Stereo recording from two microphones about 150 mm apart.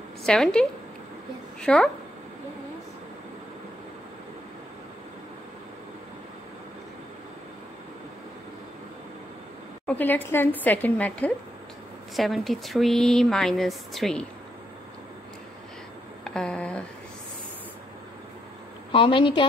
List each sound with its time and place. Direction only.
0.2 s a woman's voice: 5° left (ahead or behind)
9.8 s a woman's voice: 10° left (ahead or behind)
16.3 s a sound: 5° left (ahead or behind)
18.9 s a woman's voice: 35° left (ahead or behind)